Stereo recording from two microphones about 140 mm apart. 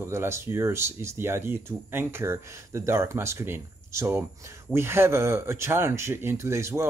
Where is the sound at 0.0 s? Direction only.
20° right (ahead or behind).